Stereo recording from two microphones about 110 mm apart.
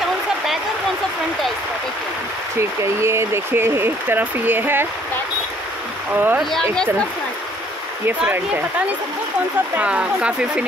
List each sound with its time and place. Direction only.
2.8 s speech: 25° right (ahead or behind)
6.1 s speech: 15° right (ahead or behind)
6.5 s speech: 10° left (ahead or behind)
9.8 s speech: 10° right (ahead or behind)